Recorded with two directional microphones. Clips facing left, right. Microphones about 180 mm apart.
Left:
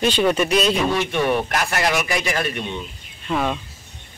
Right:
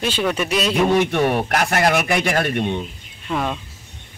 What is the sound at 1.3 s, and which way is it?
Speech, 55° right (ahead or behind).